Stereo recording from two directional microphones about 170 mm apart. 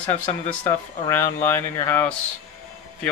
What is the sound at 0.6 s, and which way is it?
Speech, 15° left (ahead or behind).